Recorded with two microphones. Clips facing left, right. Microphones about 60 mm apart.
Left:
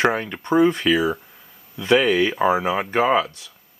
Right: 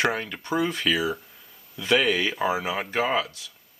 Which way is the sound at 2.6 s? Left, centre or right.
Centre.